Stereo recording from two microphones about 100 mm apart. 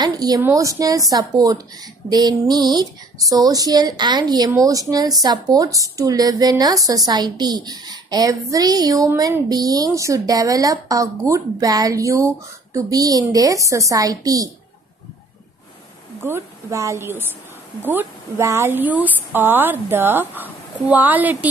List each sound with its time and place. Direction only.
0.0 s speech: 40° right (ahead or behind)
0.4 s speech: 30° right (ahead or behind)
16.2 s speech: 25° right (ahead or behind)
18.4 s a woman's voice: 30° right (ahead or behind)